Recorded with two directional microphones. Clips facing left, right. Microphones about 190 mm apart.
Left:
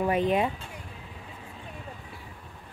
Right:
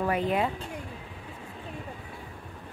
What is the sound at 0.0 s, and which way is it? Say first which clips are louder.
Speech: left 2 dB; 20° left (ahead or behind).